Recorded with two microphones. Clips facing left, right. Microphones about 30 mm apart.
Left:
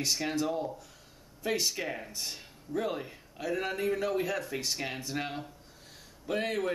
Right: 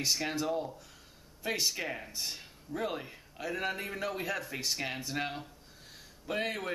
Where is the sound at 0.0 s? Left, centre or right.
Centre.